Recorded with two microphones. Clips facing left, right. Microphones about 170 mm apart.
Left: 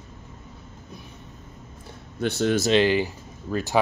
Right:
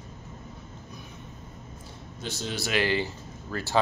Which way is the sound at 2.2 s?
60° left (ahead or behind).